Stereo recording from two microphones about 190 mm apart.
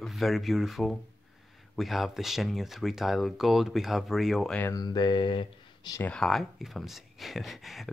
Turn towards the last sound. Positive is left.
turn(degrees=0)  # may be behind; listen again after turning